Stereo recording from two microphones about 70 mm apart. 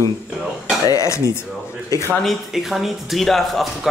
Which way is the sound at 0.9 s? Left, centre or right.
Left.